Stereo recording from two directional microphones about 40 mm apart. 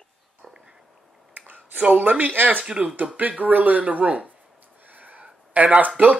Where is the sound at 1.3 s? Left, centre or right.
Right.